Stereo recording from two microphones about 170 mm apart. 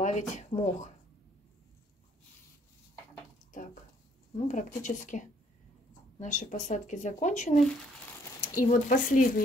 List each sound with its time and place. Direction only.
0.0 s speech: 45° left (ahead or behind)
4.5 s speech: 50° left (ahead or behind)